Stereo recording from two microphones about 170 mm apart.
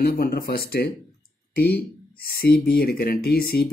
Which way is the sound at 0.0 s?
60° left (ahead or behind).